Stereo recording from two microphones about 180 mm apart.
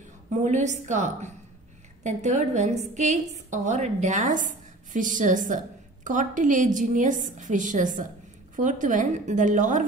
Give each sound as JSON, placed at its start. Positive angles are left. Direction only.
{"t": 0.3, "sound": "a woman's voice", "side_deg": -40}